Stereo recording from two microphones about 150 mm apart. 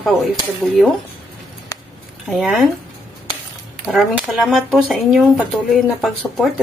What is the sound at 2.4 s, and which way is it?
Speech, centre (ahead or behind).